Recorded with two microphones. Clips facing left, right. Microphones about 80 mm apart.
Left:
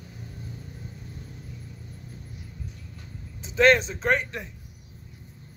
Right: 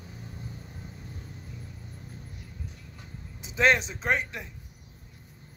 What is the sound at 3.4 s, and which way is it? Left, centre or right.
Speech, centre.